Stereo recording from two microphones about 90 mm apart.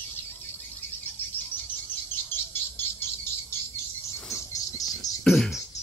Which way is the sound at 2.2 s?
25° left (ahead or behind).